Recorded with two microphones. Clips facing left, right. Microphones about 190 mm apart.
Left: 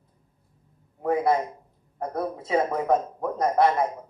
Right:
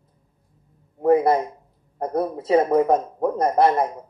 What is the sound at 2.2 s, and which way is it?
Speech, 35° right (ahead or behind).